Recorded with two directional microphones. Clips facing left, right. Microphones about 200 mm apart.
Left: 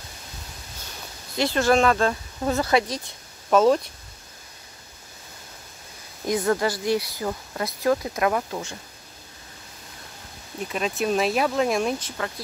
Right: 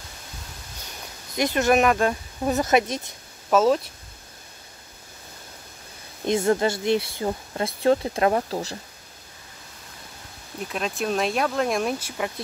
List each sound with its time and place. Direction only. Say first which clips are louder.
1.3 s speech: even; 15° right (ahead or behind)
3.4 s speech: left 1 dB; centre (ahead or behind)
6.2 s speech: right 2 dB; 25° right (ahead or behind)
10.7 s speech: left 2 dB; centre (ahead or behind)